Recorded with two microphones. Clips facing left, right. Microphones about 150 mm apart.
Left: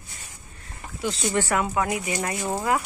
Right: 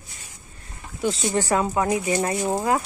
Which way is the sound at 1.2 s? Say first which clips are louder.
Right 1 dB; 35° right (ahead or behind).